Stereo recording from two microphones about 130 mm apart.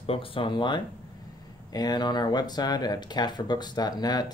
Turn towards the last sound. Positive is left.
turn(degrees=30)  # may be behind; listen again after turning